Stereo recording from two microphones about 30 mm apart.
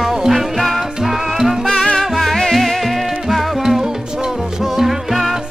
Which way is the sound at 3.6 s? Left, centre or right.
Centre.